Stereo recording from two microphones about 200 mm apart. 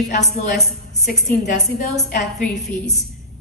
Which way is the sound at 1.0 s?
55° left (ahead or behind).